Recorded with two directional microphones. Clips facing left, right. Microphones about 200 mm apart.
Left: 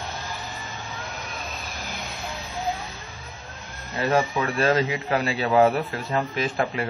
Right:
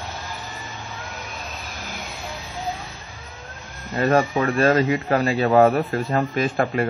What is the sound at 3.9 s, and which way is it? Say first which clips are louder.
Speech: right 4 dB; 50° right (ahead or behind).